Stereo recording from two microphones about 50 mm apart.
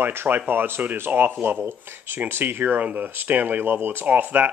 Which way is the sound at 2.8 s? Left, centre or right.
Right.